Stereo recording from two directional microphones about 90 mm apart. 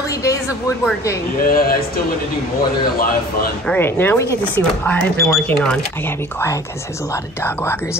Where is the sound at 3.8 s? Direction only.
25° left (ahead or behind).